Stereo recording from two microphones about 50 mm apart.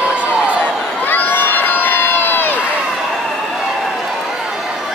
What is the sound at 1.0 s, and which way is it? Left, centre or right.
Crowd, left.